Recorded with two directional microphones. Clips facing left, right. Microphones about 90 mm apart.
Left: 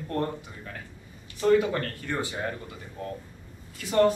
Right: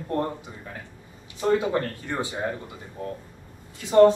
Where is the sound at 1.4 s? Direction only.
20° right (ahead or behind).